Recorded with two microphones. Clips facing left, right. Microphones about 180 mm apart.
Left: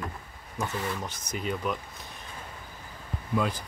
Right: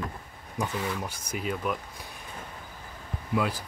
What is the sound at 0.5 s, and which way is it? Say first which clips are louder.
Speech: right 1 dB; 10° right (ahead or behind).